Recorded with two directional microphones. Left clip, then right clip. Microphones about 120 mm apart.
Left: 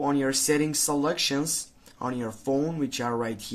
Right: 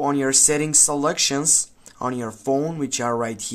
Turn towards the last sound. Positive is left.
turn(degrees=-40)  # may be behind; listen again after turning